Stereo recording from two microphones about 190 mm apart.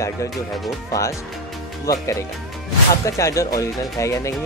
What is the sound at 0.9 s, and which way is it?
Speech, 15° left (ahead or behind).